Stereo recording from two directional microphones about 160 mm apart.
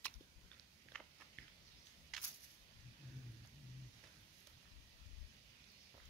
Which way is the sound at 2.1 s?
Centre (ahead or behind).